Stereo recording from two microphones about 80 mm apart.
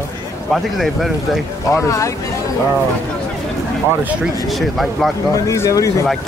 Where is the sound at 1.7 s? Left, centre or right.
Left.